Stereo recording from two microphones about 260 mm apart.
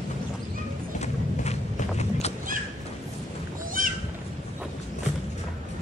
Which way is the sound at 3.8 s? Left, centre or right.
Right.